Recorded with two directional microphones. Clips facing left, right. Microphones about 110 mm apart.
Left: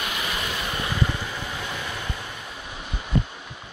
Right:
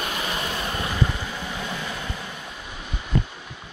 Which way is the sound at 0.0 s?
35° right (ahead or behind).